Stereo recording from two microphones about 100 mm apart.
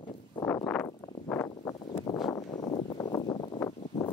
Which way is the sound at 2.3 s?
40° left (ahead or behind).